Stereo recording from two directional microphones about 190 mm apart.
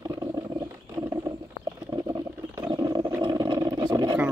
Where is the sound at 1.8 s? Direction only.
20° right (ahead or behind).